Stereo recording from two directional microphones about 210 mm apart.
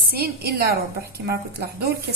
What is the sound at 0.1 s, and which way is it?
A woman's voice, 50° right (ahead or behind).